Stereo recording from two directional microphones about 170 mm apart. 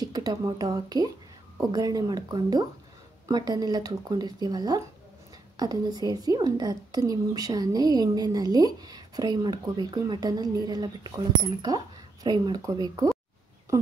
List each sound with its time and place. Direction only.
0.0 s a woman's voice: 25° right (ahead or behind)